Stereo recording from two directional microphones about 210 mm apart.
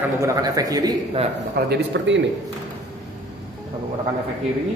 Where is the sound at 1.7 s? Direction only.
60° right (ahead or behind).